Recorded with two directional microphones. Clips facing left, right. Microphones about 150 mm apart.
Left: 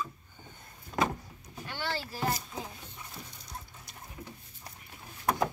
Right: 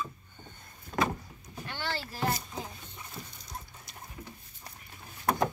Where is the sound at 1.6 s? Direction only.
10° left (ahead or behind).